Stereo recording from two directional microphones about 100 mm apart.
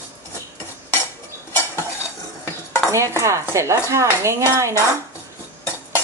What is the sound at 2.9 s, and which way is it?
A woman's voice, 30° right (ahead or behind).